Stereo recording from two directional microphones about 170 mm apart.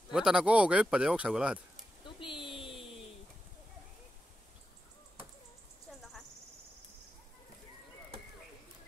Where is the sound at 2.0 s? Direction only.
30° left (ahead or behind).